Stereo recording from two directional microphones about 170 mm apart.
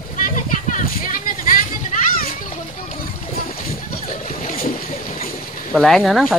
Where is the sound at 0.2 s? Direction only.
50° left (ahead or behind).